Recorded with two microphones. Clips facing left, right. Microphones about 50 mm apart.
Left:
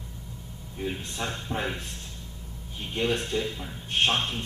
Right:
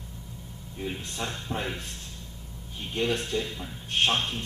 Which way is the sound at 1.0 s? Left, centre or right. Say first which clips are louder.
Left 1 dB; left.